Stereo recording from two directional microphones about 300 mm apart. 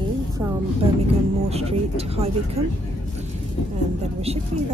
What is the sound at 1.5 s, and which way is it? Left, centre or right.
Speech, centre.